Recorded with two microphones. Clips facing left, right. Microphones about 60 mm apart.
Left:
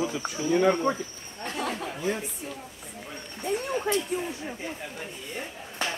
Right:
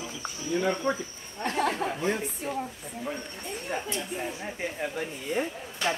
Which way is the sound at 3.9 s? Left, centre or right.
Left.